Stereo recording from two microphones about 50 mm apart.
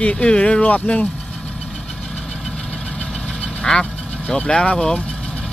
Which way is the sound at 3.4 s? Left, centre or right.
Centre.